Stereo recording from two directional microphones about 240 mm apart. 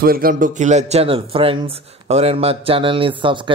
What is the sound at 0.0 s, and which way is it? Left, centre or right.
Speech, right.